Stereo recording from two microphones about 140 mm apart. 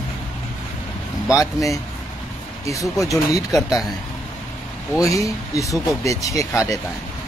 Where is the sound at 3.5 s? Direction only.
Centre (ahead or behind).